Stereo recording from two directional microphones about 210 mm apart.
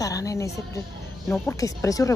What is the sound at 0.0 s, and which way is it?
A woman's voice, 15° left (ahead or behind).